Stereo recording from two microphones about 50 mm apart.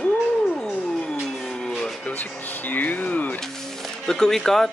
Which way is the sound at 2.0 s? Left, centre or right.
Left.